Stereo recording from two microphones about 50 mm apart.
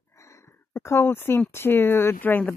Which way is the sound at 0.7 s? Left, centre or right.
Left.